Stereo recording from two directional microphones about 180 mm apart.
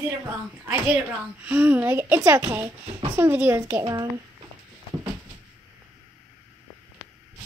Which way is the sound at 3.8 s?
20° right (ahead or behind).